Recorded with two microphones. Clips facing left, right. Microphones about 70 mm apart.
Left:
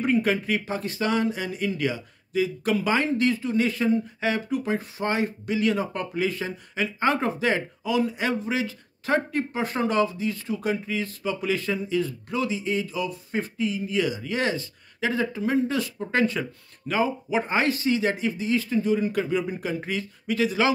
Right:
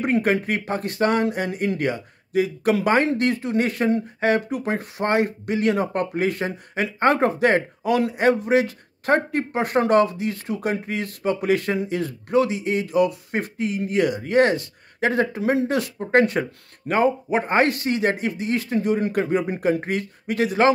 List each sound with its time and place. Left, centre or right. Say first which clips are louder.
0.0 s speech: right 2 dB; right